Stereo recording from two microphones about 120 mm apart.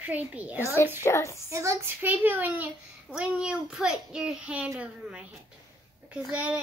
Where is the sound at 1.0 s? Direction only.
25° left (ahead or behind).